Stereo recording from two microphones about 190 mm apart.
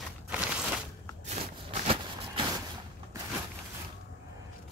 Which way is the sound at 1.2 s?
35° right (ahead or behind).